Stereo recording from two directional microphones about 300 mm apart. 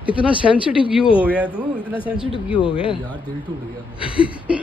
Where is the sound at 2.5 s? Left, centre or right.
Centre.